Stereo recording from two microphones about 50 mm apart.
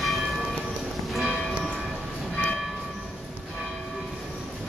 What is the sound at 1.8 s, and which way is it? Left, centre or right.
Train, centre.